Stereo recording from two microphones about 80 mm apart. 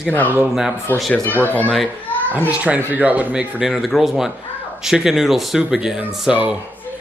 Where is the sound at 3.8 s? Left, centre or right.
Centre.